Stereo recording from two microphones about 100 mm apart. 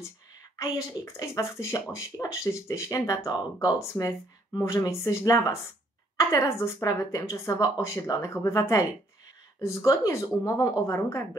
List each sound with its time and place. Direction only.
0.6 s speech: 30° left (ahead or behind)